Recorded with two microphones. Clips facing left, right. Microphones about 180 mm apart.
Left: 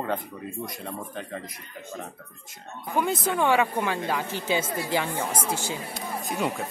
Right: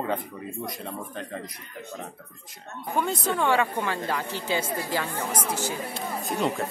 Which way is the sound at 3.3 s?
15° left (ahead or behind).